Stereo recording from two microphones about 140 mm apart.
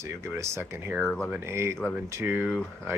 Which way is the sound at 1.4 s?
20° right (ahead or behind).